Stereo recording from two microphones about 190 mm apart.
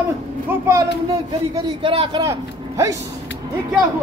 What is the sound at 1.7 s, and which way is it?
A man's voice, 30° right (ahead or behind).